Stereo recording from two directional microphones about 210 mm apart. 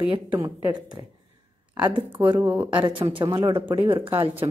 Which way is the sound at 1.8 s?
25° right (ahead or behind).